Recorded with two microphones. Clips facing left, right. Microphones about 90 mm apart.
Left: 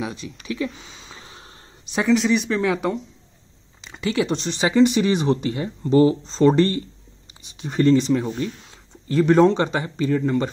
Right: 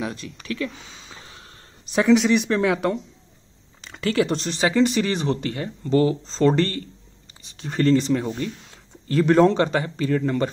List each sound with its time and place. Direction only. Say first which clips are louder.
0.0 s speech: even; 10° left (ahead or behind)
2.0 s speech: right 2 dB; centre (ahead or behind)
4.6 s speech: left 3 dB; 10° left (ahead or behind)
6.2 s speech: left 3 dB; 10° left (ahead or behind)